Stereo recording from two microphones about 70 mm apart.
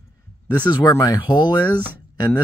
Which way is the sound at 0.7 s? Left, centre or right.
Left.